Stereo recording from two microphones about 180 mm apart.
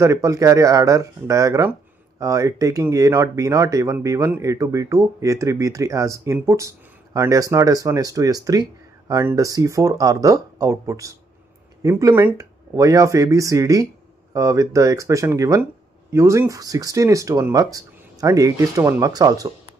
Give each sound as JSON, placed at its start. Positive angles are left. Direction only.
{"t": 0.0, "sound": "speech", "side_deg": -15}